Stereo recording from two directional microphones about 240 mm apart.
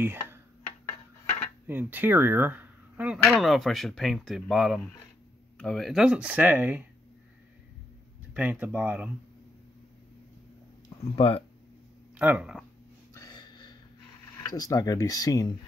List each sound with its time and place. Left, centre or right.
0.0 s mechanisms: centre
1.7 s speech: centre
8.3 s speech: centre
11.1 s speech: left
12.2 s speech: centre
13.1 s a sound: centre
14.5 s speech: centre